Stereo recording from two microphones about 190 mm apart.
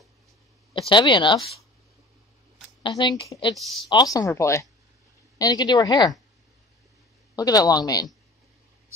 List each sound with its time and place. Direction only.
0.8 s speech: 25° left (ahead or behind)
3.0 s speech: 25° left (ahead or behind)
3.5 s speech: centre (ahead or behind)
3.9 s speech: 20° left (ahead or behind)
7.3 s speech: 20° left (ahead or behind)